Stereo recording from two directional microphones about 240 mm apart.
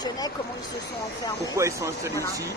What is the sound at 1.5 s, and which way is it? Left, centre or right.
Speech, centre.